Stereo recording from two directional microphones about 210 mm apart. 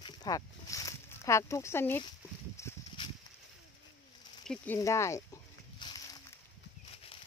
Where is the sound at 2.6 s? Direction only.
15° left (ahead or behind).